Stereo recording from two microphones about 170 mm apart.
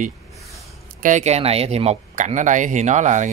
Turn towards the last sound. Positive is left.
turn(degrees=-45)  # may be behind; listen again after turning